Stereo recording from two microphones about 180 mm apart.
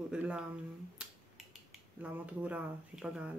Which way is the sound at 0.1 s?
5° right (ahead or behind).